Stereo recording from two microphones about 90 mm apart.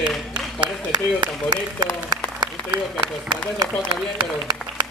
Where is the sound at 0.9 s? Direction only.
50° right (ahead or behind).